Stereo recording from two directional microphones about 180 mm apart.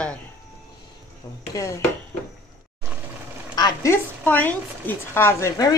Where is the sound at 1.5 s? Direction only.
15° left (ahead or behind).